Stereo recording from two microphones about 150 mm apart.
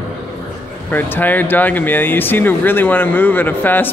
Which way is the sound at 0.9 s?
10° left (ahead or behind).